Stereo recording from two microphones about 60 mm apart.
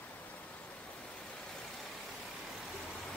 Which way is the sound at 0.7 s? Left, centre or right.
Centre.